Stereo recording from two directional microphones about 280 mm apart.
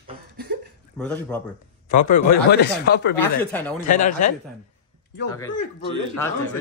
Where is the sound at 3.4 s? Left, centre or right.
Centre.